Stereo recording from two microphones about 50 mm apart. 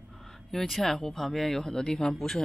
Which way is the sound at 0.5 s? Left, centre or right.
Centre.